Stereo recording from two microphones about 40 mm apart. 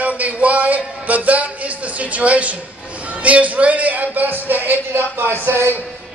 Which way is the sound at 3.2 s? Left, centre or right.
Right.